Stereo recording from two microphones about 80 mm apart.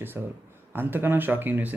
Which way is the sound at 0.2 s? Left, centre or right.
Right.